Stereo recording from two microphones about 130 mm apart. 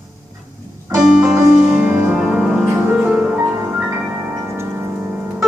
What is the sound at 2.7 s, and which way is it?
Music, 15° right (ahead or behind).